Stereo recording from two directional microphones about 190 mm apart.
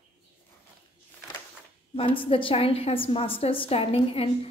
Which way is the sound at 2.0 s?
30° left (ahead or behind).